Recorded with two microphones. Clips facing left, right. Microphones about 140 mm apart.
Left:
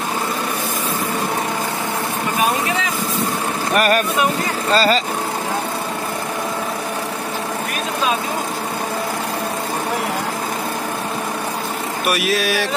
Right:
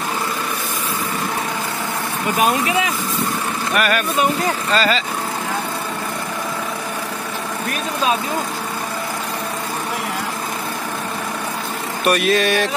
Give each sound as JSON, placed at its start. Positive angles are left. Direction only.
{"t": 3.7, "sound": "speech", "side_deg": 40}
{"t": 12.0, "sound": "speech", "side_deg": 5}